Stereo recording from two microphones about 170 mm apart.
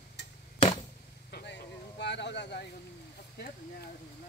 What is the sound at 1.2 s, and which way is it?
Vehicle, 75° left (ahead or behind).